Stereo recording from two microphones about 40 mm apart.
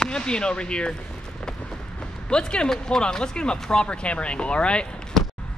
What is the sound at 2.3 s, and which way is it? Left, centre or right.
Speech, left.